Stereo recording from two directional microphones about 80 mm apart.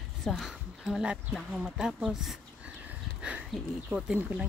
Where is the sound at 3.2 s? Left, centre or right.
Centre.